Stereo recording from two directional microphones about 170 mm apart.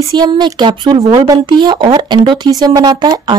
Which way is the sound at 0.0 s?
25° right (ahead or behind).